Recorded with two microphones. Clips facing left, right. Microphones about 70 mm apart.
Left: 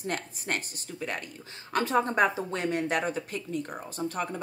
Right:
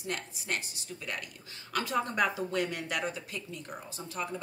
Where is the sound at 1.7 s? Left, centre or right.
Left.